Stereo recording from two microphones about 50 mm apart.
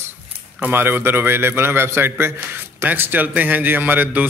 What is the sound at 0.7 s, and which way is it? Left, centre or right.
A man's voice, right.